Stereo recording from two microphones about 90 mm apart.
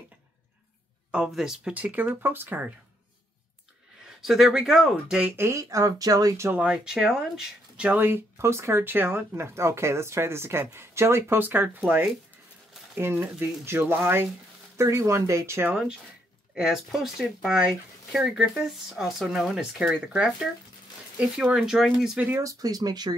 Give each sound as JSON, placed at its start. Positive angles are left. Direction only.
{"t": 1.1, "sound": "speech", "side_deg": -10}
{"t": 4.0, "sound": "speech", "side_deg": -5}
{"t": 5.3, "sound": "speech", "side_deg": -30}
{"t": 6.5, "sound": "speech", "side_deg": -15}
{"t": 8.0, "sound": "speech", "side_deg": -25}
{"t": 13.0, "sound": "speech", "side_deg": -20}
{"t": 16.5, "sound": "speech", "side_deg": -5}
{"t": 22.4, "sound": "speech", "side_deg": -40}